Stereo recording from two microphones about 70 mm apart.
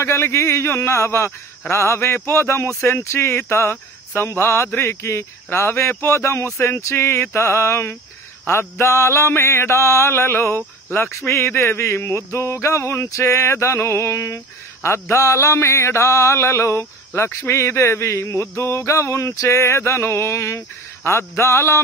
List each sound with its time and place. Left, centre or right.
0.0 s mantra: left
3.7 s speech: left
4.7 s mantra: left